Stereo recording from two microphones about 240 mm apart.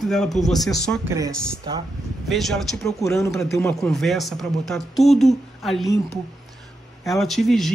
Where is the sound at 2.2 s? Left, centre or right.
Centre.